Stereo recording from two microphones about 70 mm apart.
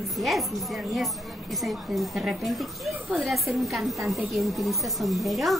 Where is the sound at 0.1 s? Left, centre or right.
Centre.